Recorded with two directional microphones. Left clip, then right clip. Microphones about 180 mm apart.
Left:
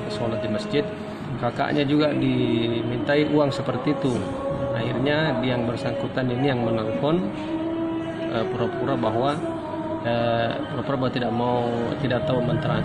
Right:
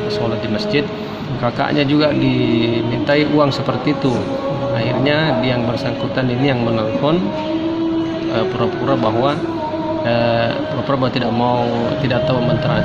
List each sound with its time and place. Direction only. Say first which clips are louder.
1.6 s speech: right 6 dB; 10° right (ahead or behind)
5.0 s speech: right 6 dB; 10° right (ahead or behind)
8.4 s speech: right 6 dB; 5° right (ahead or behind)